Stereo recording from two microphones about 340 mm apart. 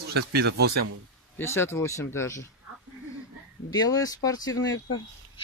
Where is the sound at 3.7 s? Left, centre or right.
Centre.